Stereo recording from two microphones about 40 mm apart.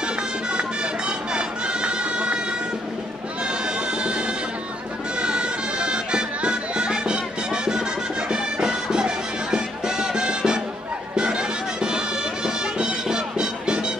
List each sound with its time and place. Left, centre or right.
0.5 s music: right
3.6 s music: right
5.2 s music: right